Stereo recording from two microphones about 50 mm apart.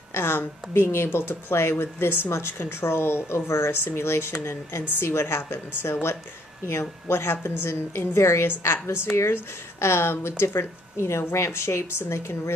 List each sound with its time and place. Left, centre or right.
0.1 s a sound: left
0.7 s speech: left
3.8 s speech: left
4.5 s speech: left
6.7 s speech: left